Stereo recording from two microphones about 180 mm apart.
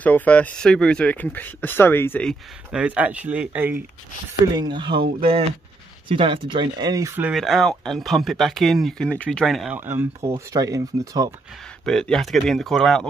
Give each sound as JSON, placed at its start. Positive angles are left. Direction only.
{"t": 0.0, "sound": "speech", "side_deg": 10}
{"t": 2.7, "sound": "speech", "side_deg": -5}
{"t": 4.5, "sound": "speech", "side_deg": -25}
{"t": 7.2, "sound": "speech", "side_deg": 0}
{"t": 9.8, "sound": "speech", "side_deg": -10}
{"t": 11.8, "sound": "speech", "side_deg": 5}